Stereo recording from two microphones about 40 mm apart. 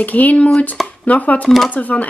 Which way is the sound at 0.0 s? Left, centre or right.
Left.